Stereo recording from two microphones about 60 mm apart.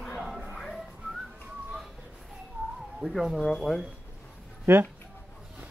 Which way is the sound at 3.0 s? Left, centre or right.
Centre.